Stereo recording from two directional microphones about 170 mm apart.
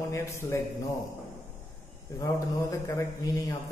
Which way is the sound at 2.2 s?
20° left (ahead or behind).